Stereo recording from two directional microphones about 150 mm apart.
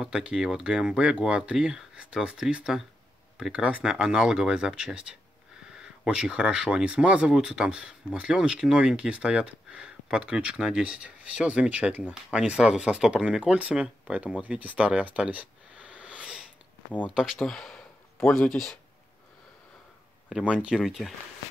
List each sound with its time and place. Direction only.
0.0 s speech: 5° right (ahead or behind)
14.4 s a sound: 10° right (ahead or behind)
17.1 s speech: 5° right (ahead or behind)
20.2 s speech: 5° right (ahead or behind)